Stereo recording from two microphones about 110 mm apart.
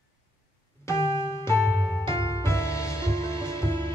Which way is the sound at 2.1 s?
25° left (ahead or behind).